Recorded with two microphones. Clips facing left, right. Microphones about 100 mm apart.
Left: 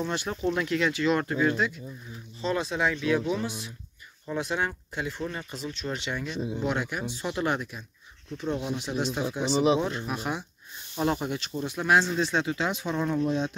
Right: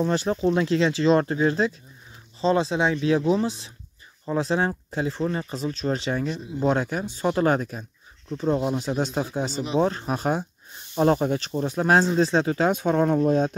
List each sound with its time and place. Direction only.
0.0 s speech: 35° right (ahead or behind)